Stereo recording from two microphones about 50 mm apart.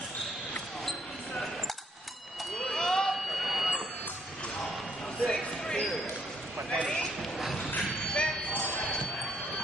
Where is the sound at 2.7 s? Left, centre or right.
Centre.